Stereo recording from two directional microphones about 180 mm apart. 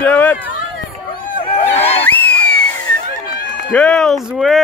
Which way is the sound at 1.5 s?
35° left (ahead or behind).